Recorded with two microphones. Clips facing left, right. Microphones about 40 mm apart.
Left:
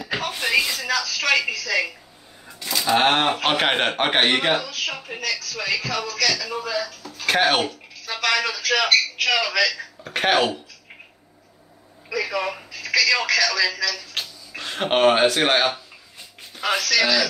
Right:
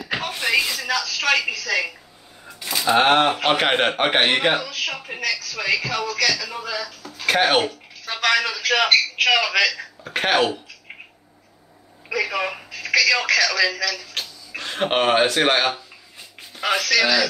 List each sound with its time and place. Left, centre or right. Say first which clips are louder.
0.1 s speech: even; centre
2.7 s a man's voice: right 2 dB; centre
6.9 s a sound: even; centre
7.2 s speech: right 1 dB; centre
8.0 s a sound: right 2 dB; right
8.4 s a man's voice: right 1 dB; centre
8.6 s speech: right 1 dB; right
9.7 s speech: even; centre
12.1 s a man's voice: right 1 dB; right